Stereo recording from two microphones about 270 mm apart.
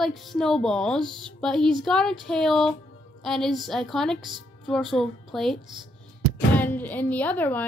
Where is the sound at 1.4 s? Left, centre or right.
Centre.